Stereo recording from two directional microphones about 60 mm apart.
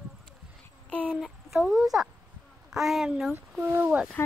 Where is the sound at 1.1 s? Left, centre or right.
Centre.